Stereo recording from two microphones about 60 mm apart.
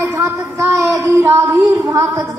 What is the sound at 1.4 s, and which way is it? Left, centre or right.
Speech, right.